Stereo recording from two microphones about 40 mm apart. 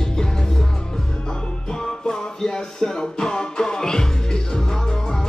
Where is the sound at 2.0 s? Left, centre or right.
Centre.